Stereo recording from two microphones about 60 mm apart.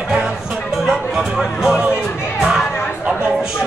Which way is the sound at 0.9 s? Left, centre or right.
Centre.